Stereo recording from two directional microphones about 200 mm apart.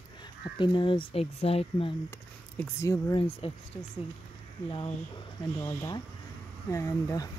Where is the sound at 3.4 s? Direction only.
30° left (ahead or behind).